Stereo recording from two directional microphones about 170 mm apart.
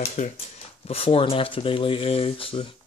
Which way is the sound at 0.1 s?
40° left (ahead or behind).